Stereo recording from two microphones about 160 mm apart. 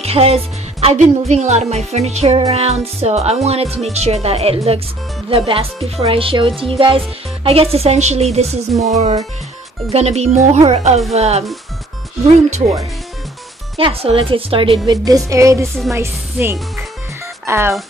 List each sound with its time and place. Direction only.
0.0 s speech: 40° right (ahead or behind)
13.7 s speech: 35° right (ahead or behind)
14.9 s speech: 20° right (ahead or behind)